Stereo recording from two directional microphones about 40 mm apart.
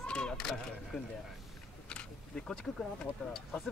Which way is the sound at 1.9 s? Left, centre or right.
Left.